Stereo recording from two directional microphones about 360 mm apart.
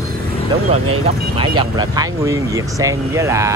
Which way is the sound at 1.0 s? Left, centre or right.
Centre.